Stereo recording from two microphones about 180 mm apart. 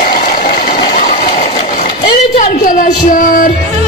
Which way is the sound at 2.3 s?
45° left (ahead or behind).